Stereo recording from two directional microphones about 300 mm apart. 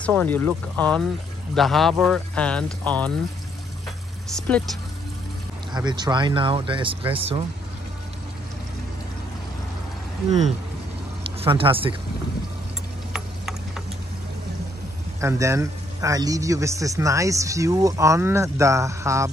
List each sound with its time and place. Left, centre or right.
0.0 s speech: centre
4.4 s speech: centre
5.7 s a man's voice: centre
11.2 s speech: centre
13.1 s tick-tock: centre
15.1 s a man's voice: centre